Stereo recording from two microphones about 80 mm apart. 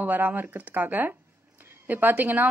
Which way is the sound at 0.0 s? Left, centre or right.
Right.